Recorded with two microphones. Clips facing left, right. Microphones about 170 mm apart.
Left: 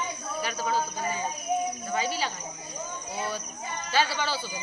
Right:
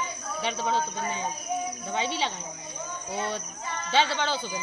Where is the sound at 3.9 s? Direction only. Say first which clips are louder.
Right 2 dB; 25° right (ahead or behind).